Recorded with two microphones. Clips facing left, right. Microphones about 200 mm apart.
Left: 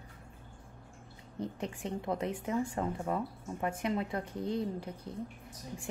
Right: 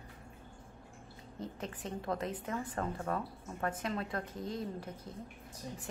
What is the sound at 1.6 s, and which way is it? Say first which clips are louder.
A woman's voice: left 2 dB; 15° left (ahead or behind).